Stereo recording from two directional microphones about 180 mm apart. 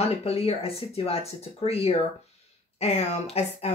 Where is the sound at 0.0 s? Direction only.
35° left (ahead or behind).